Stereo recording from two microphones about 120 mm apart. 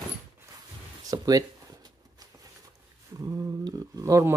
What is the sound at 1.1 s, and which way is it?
Speech, 30° right (ahead or behind).